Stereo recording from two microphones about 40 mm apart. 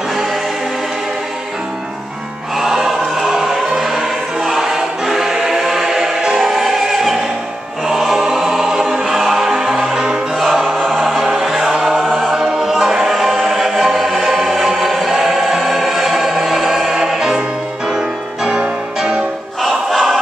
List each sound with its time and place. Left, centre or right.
2.5 s music: centre
3.6 s choir: centre
9.9 s music: centre
10.3 s music: centre
11.7 s choir: centre
12.0 s choir: centre
12.3 s music: centre
13.1 s music: centre
14.4 s choir: centre
15.5 s music: centre
19.6 s music: centre